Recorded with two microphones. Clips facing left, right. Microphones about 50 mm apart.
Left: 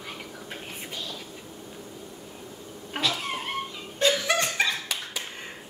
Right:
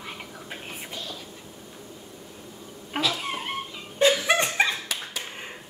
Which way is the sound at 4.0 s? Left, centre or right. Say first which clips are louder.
Right 3 dB; centre.